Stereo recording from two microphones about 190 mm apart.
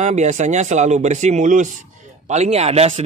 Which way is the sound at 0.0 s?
40° right (ahead or behind).